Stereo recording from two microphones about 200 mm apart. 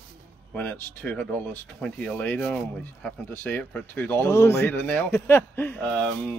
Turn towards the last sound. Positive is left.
turn(degrees=5)  # may be behind; listen again after turning